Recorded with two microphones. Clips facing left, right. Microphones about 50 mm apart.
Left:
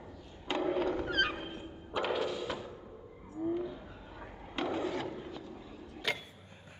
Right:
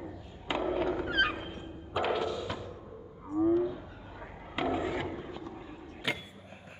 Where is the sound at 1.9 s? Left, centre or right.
Centre.